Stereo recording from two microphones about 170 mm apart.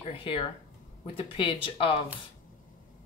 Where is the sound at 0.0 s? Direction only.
35° left (ahead or behind).